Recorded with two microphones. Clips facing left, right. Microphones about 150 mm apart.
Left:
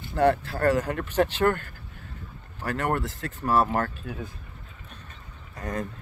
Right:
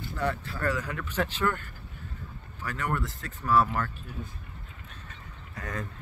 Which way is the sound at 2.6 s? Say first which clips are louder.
Left 5 dB; 60° left (ahead or behind).